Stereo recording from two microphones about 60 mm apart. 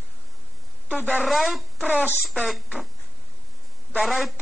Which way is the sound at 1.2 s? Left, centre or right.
Centre.